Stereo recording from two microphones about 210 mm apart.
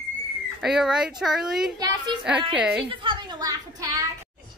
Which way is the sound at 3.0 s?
20° right (ahead or behind).